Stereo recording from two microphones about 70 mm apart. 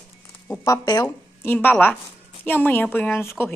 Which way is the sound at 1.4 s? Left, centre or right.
Left.